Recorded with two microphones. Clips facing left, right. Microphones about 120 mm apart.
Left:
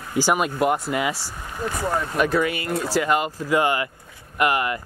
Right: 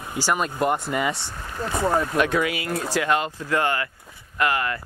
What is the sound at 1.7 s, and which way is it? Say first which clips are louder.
Speech: right 4 dB; 20° right (ahead or behind).